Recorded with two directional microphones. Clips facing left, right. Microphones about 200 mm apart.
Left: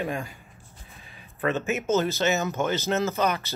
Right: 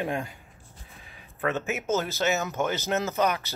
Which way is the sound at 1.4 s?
10° right (ahead or behind).